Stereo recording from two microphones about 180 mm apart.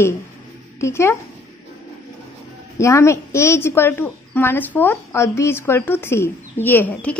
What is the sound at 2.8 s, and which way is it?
Speech, 15° left (ahead or behind).